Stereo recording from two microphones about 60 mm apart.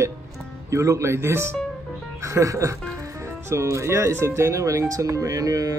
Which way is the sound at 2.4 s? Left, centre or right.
Right.